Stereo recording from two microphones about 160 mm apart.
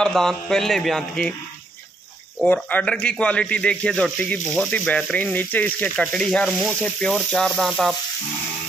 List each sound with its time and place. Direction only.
0.0 s speech: centre (ahead or behind)
2.4 s speech: 10° left (ahead or behind)